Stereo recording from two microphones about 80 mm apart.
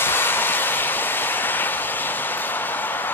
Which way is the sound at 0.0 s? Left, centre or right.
Left.